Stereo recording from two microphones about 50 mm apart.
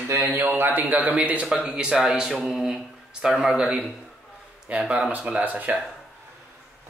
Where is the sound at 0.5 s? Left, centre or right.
Right.